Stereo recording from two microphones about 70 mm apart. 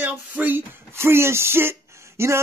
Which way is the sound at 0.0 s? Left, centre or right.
Right.